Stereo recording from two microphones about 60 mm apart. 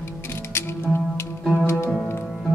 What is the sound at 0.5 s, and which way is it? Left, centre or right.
Music, left.